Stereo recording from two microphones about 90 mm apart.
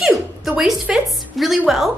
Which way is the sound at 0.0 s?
5° right (ahead or behind).